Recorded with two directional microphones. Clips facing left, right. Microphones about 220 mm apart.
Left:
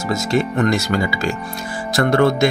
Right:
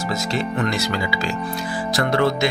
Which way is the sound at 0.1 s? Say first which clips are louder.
Left 7 dB; 45° left (ahead or behind).